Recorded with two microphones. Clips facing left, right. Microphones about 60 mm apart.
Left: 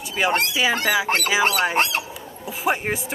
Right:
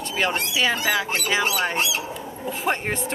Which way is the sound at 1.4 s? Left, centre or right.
Left.